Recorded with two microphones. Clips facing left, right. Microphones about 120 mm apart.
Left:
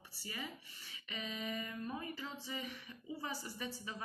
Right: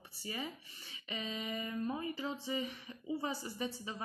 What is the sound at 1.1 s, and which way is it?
A woman's voice, 25° right (ahead or behind).